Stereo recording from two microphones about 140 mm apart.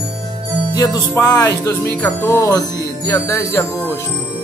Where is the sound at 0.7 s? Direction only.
25° left (ahead or behind).